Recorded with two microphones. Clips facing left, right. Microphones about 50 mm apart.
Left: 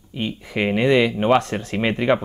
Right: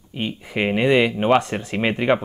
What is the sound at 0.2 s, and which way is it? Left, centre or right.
Speech, centre.